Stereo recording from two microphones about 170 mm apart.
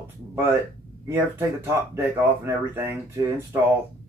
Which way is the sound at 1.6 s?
15° right (ahead or behind).